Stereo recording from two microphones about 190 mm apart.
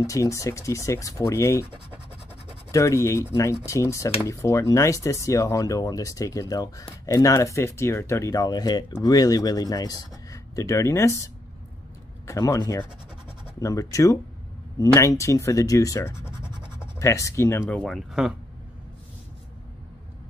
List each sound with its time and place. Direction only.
0.0 s speech: 15° left (ahead or behind)
2.7 s speech: 15° left (ahead or behind)
12.3 s speech: 15° left (ahead or behind)
16.4 s scratch: 25° right (ahead or behind)
17.0 s speech: 15° left (ahead or behind); by 18.3 s centre (ahead or behind)